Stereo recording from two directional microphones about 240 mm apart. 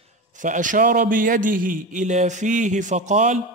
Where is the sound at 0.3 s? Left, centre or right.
Right.